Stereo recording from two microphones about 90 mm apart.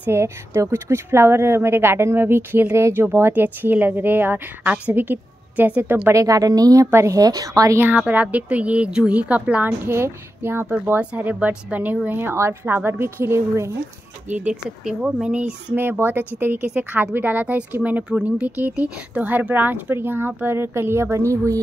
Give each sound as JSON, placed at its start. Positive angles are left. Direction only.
{"t": 0.0, "sound": "a woman's voice", "side_deg": -30}
{"t": 6.0, "sound": "a woman's voice", "side_deg": -35}
{"t": 6.9, "sound": "a woman's voice", "side_deg": -30}
{"t": 7.2, "sound": "a woman's voice", "side_deg": -45}
{"t": 8.0, "sound": "speech", "side_deg": -15}
{"t": 9.8, "sound": "a woman's voice", "side_deg": -25}
{"t": 14.3, "sound": "speech", "side_deg": -10}
{"t": 15.7, "sound": "a woman's voice", "side_deg": -25}